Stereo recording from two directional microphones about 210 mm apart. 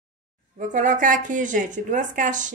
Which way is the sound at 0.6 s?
35° right (ahead or behind).